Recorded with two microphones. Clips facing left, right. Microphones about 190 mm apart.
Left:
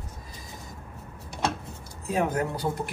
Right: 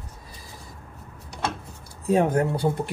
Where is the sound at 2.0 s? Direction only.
30° right (ahead or behind).